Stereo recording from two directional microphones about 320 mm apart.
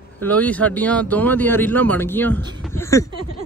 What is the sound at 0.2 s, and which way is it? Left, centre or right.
Speech, centre.